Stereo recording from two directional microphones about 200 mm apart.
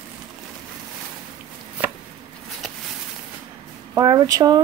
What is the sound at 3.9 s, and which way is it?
Speech, 20° right (ahead or behind).